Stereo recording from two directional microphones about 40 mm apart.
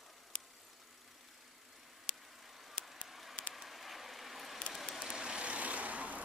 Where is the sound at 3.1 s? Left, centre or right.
Centre.